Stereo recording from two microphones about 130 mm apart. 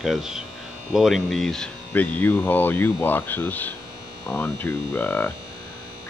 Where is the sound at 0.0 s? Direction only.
5° right (ahead or behind).